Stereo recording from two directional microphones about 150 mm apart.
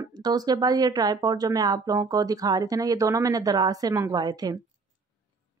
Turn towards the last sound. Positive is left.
turn(degrees=-25)  # may be behind; listen again after turning